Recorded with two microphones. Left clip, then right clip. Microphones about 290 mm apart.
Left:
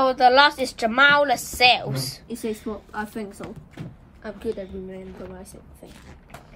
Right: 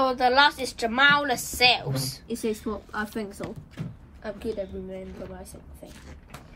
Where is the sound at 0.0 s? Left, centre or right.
Left.